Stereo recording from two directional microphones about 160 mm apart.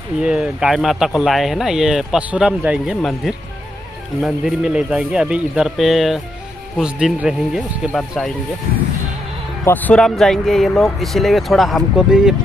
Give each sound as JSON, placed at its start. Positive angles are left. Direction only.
{"t": 0.2, "sound": "speech", "side_deg": -5}
{"t": 9.7, "sound": "speech", "side_deg": 10}